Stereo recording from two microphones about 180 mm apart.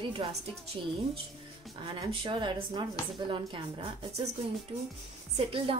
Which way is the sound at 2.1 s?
25° right (ahead or behind).